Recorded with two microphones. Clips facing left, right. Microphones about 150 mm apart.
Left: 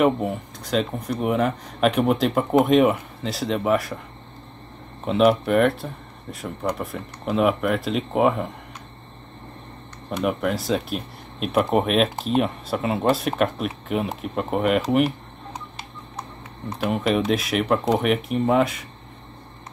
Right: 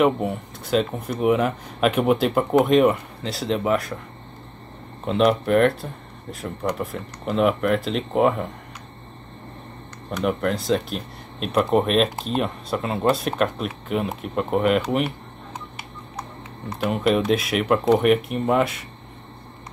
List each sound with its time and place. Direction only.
0.0 s speech: centre (ahead or behind)
5.0 s speech: centre (ahead or behind)
10.2 s speech: 5° left (ahead or behind)
16.8 s speech: centre (ahead or behind)